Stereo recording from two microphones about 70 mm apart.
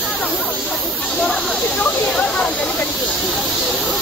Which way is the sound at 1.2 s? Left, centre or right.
Centre.